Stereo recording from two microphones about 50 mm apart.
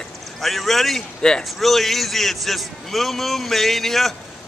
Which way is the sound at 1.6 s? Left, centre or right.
Centre.